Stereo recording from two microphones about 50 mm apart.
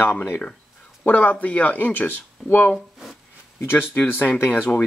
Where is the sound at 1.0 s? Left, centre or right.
Left.